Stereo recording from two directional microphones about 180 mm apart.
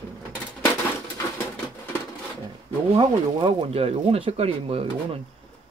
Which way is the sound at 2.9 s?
30° right (ahead or behind).